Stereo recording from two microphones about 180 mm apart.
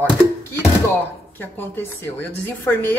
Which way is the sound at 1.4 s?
10° left (ahead or behind).